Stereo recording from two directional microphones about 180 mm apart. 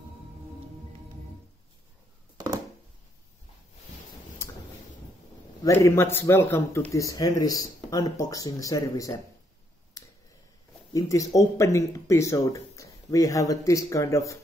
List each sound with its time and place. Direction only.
2.3 s a sound: 20° right (ahead or behind)
5.6 s speech: 15° left (ahead or behind)
10.9 s speech: 20° left (ahead or behind)